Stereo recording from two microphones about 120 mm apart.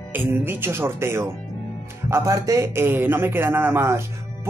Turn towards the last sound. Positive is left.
turn(degrees=-20)  # may be behind; listen again after turning